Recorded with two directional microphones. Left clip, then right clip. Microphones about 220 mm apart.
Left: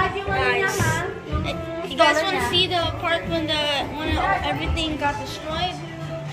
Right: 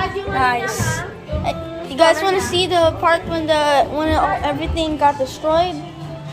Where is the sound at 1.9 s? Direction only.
15° right (ahead or behind).